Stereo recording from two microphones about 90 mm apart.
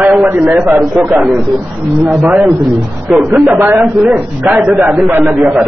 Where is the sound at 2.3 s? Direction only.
Centre (ahead or behind).